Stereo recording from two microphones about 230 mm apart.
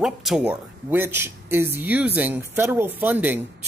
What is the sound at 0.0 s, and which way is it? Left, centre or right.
Speech, centre.